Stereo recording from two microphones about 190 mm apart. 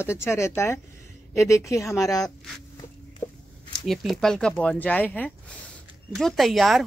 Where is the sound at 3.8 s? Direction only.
Centre (ahead or behind).